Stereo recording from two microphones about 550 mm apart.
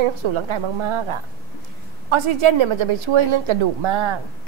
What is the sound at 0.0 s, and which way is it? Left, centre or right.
Speech, right.